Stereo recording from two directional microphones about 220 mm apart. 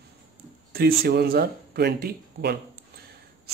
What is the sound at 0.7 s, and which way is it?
Speech, 45° right (ahead or behind).